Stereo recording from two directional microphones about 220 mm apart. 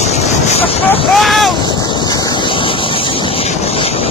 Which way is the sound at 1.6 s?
20° left (ahead or behind).